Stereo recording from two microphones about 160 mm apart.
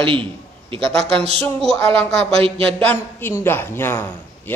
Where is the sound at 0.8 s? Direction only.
5° left (ahead or behind).